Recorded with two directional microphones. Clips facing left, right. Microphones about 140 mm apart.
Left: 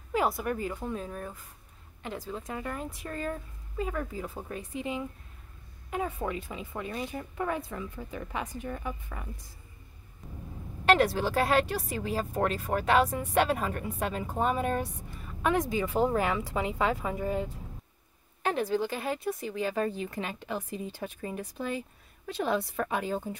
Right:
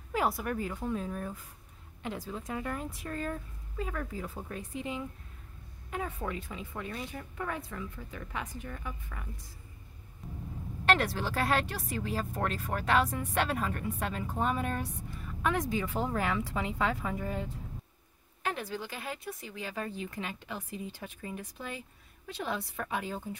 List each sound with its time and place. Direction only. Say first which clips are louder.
0.1 s speech: left 2 dB; centre (ahead or behind); by 9.3 s 30° left (ahead or behind)
10.9 s speech: left 5 dB; 15° left (ahead or behind)
18.4 s speech: left 8 dB; 30° left (ahead or behind)